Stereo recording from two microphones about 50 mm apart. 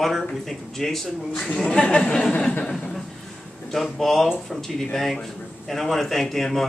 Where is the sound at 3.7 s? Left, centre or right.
Centre.